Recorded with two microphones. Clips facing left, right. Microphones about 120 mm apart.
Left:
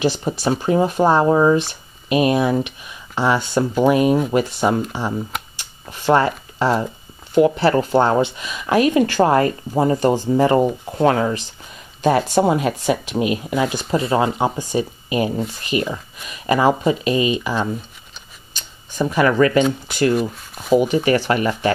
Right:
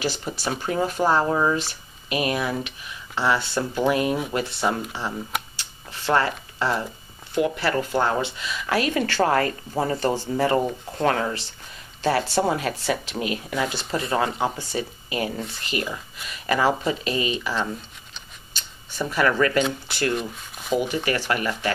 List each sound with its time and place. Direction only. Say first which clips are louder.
0.0 s speech: left 8 dB; 20° left (ahead or behind)
5.6 s a sound: left 3 dB; 15° left (ahead or behind)
7.3 s speech: left 8 dB; 30° left (ahead or behind)
18.9 s speech: left 5 dB; 15° left (ahead or behind)
20.2 s speech: left 8 dB; centre (ahead or behind)
20.8 s speech: left 8 dB; 25° left (ahead or behind)